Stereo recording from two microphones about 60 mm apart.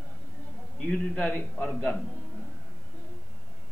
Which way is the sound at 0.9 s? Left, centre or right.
Centre.